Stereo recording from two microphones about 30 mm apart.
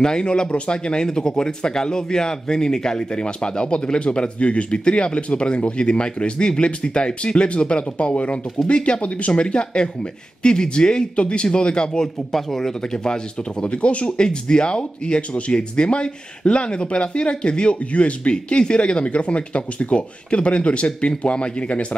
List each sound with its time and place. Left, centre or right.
0.0 s a man's voice: left
3.0 s a man's voice: left
12.3 s speech: centre
12.9 s a man's voice: left
13.7 s speech: left
14.2 s speech: left
18.3 s speech: left